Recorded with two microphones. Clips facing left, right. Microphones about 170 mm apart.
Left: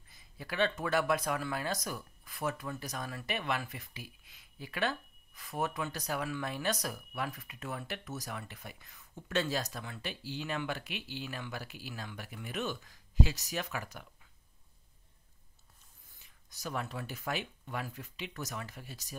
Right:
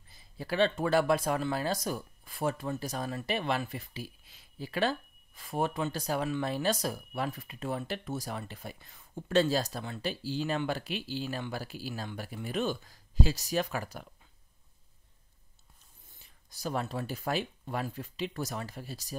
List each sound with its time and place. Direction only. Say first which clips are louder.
0.1 s speech: right 7 dB; 30° right (ahead or behind)
16.2 s speech: right 6 dB; 30° right (ahead or behind)